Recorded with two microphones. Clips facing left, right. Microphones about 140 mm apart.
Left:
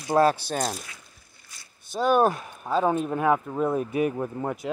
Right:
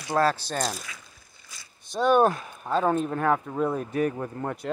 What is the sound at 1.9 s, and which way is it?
Speech, 5° left (ahead or behind).